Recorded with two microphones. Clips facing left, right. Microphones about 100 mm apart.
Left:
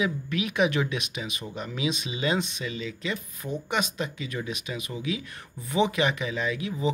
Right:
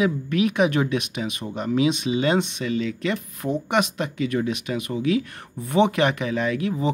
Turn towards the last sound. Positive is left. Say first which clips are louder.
# right 4 dB
turn(degrees=-55)  # may be behind; listen again after turning